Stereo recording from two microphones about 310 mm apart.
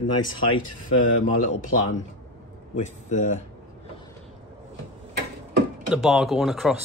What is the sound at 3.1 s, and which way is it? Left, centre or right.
Speech, left.